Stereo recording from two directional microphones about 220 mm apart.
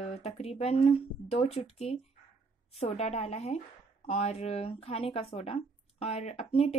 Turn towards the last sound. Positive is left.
turn(degrees=30)  # may be behind; listen again after turning